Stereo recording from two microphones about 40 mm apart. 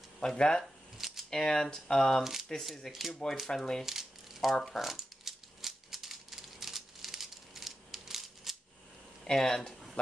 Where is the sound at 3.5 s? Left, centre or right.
Centre.